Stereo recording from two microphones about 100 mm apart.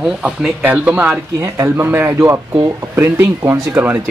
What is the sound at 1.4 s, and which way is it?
Speech, 25° right (ahead or behind).